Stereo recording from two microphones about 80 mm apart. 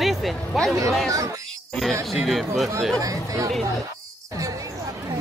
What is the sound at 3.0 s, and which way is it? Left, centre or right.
Speech, right.